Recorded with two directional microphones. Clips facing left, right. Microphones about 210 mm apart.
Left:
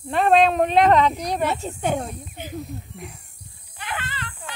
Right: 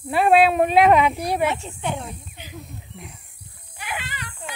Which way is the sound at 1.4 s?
40° left (ahead or behind).